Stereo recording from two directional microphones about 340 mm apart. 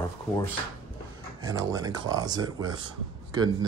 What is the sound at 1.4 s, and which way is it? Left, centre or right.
Speech, centre.